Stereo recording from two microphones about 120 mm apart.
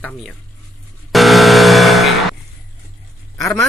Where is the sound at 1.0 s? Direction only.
Centre (ahead or behind).